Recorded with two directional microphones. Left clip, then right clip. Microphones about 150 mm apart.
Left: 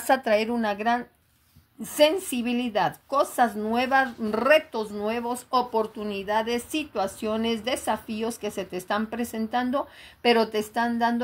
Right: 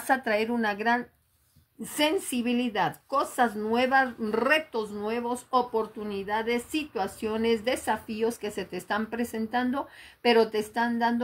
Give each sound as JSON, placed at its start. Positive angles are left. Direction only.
{"t": 0.0, "sound": "a woman's voice", "side_deg": 25}